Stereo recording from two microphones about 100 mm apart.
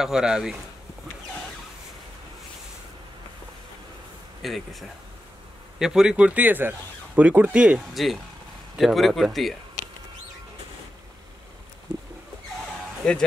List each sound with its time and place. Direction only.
0.0 s speech: 5° right (ahead or behind)
4.4 s speech: centre (ahead or behind)
7.9 s speech: centre (ahead or behind)
13.0 s speech: 10° left (ahead or behind)